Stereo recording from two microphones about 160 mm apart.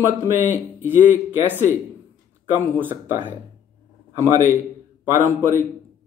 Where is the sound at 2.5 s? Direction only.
10° right (ahead or behind).